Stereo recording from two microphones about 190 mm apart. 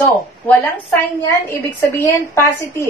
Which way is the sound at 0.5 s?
10° left (ahead or behind).